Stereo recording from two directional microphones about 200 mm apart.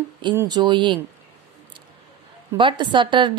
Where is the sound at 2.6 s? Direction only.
25° right (ahead or behind).